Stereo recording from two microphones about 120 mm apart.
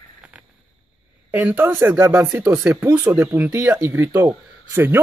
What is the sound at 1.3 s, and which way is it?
Speech, 15° right (ahead or behind).